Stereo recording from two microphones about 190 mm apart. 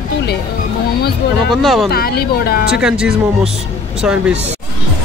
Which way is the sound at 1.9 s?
55° left (ahead or behind).